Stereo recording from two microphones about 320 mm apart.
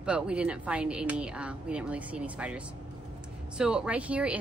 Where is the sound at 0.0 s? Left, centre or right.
Centre.